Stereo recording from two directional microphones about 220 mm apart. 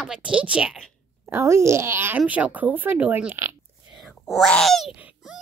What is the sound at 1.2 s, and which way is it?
Speech, 10° right (ahead or behind).